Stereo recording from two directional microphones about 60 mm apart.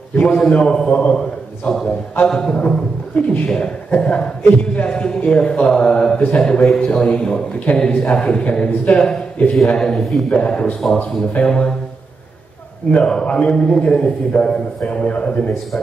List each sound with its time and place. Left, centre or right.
0.1 s a man's voice: left
12.9 s a man's voice: centre